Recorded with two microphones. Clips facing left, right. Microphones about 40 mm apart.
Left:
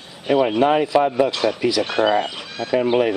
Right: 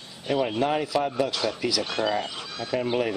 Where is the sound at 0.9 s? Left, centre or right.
Left.